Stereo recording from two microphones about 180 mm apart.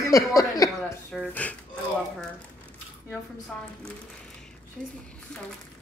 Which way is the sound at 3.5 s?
5° left (ahead or behind).